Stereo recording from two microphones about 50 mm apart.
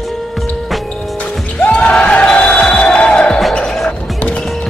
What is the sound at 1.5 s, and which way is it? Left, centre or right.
Music, left.